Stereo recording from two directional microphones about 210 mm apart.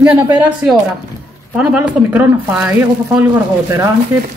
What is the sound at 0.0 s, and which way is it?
Speech, 5° right (ahead or behind).